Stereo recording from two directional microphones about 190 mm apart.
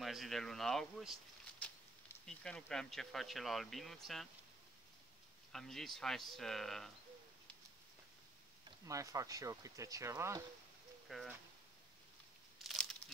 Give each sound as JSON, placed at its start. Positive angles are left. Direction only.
{"t": 0.0, "sound": "speech", "side_deg": 0}
{"t": 2.2, "sound": "speech", "side_deg": 5}
{"t": 5.5, "sound": "speech", "side_deg": 0}
{"t": 8.6, "sound": "speech", "side_deg": -15}
{"t": 11.1, "sound": "speech", "side_deg": 0}
{"t": 12.5, "sound": "a sound", "side_deg": 0}